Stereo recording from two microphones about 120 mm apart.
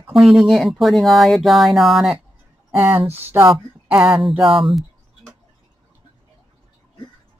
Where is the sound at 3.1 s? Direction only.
20° right (ahead or behind).